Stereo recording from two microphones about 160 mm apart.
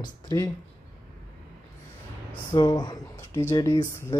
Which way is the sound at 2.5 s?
25° left (ahead or behind).